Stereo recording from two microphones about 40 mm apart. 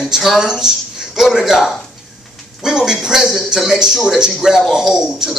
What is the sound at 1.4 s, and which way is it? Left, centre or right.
Speech, centre.